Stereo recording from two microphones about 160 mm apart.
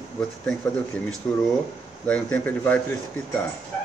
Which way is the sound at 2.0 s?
10° left (ahead or behind).